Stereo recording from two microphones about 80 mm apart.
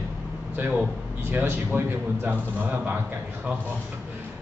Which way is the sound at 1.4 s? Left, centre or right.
Right.